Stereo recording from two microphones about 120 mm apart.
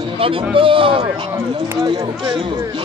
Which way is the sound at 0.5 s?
45° right (ahead or behind).